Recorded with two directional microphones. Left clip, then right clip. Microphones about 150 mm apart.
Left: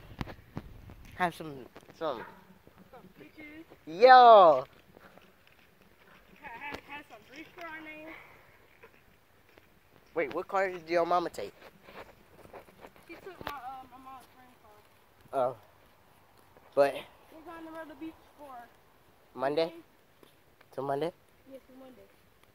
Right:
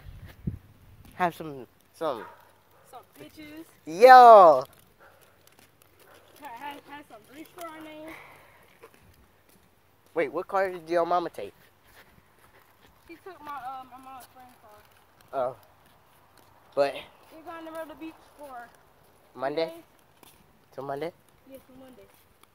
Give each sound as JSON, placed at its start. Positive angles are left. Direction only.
{"t": 1.1, "sound": "speech", "side_deg": -15}
{"t": 3.8, "sound": "speech", "side_deg": -30}
{"t": 6.5, "sound": "a sound", "side_deg": -35}
{"t": 7.1, "sound": "speech", "side_deg": -35}
{"t": 10.3, "sound": "speech", "side_deg": 0}
{"t": 11.0, "sound": "speech", "side_deg": 15}
{"t": 13.3, "sound": "speech", "side_deg": -15}
{"t": 15.3, "sound": "speech", "side_deg": 55}
{"t": 16.7, "sound": "speech", "side_deg": 45}
{"t": 17.5, "sound": "speech", "side_deg": -30}
{"t": 19.3, "sound": "speech", "side_deg": 65}
{"t": 20.7, "sound": "speech", "side_deg": 70}